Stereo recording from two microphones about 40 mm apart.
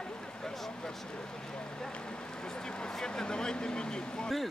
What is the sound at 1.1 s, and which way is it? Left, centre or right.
Speech, left.